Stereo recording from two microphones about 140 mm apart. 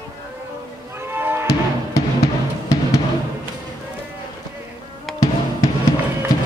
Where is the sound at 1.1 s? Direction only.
15° right (ahead or behind).